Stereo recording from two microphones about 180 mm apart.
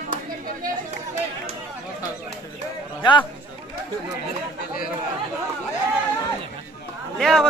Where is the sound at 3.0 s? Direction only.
25° left (ahead or behind).